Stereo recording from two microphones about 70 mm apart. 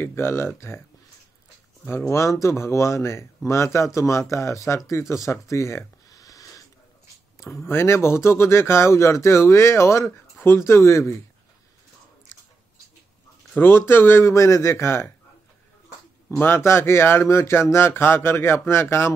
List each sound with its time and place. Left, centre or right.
0.0 s speech: left
1.9 s speech: left
5.3 s a sound: left
7.3 s speech: left
13.6 s speech: left
16.3 s speech: left